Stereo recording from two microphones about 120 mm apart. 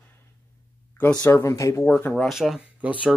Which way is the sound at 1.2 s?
25° left (ahead or behind).